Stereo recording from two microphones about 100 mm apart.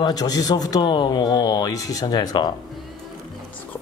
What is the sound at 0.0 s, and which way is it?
Speech, 40° left (ahead or behind).